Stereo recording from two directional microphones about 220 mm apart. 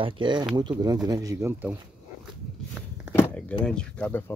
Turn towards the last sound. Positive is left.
turn(degrees=5)  # may be behind; listen again after turning